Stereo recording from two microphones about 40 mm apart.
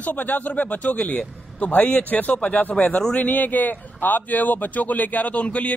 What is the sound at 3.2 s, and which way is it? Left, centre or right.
Speech, left.